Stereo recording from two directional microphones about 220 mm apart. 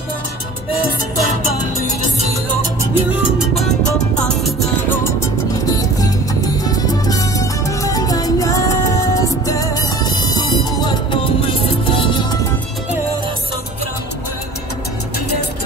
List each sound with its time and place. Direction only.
2.9 s music: 5° right (ahead or behind)
5.5 s music: 15° left (ahead or behind)